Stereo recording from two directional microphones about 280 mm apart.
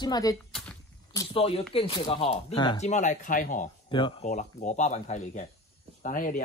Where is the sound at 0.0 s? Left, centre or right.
Centre.